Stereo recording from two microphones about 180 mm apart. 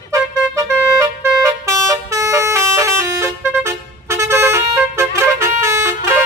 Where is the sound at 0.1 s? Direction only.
15° right (ahead or behind).